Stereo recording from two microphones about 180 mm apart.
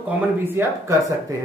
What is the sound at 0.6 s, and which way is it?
Speech, 15° right (ahead or behind).